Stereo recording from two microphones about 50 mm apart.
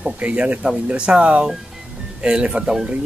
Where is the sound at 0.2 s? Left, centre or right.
Right.